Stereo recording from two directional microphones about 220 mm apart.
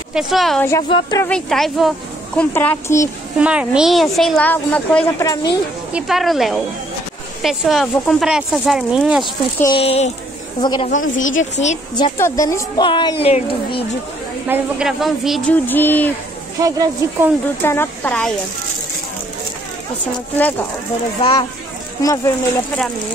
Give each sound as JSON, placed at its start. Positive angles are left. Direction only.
{"t": 0.1, "sound": "a woman's voice", "side_deg": 0}
{"t": 0.8, "sound": "speech", "side_deg": 25}
{"t": 1.2, "sound": "speech", "side_deg": 5}
{"t": 3.3, "sound": "a woman's voice", "side_deg": -5}
{"t": 5.9, "sound": "a woman's voice", "side_deg": 0}
{"t": 9.6, "sound": "speech", "side_deg": 25}
{"t": 10.9, "sound": "a woman's voice", "side_deg": 60}
{"t": 12.0, "sound": "speech", "side_deg": 15}
{"t": 14.5, "sound": "a woman's voice", "side_deg": -5}
{"t": 16.5, "sound": "speech", "side_deg": -15}
{"t": 17.6, "sound": "speech", "side_deg": 10}
{"t": 20.3, "sound": "speech", "side_deg": 5}
{"t": 21.2, "sound": "speech", "side_deg": 25}
{"t": 22.0, "sound": "speech", "side_deg": 15}